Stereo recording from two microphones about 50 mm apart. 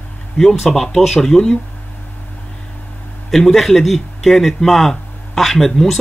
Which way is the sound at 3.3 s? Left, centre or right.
Centre.